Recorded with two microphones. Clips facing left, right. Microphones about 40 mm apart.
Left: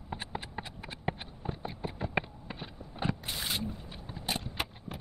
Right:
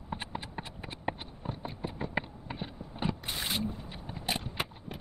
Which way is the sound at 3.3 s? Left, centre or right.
Right.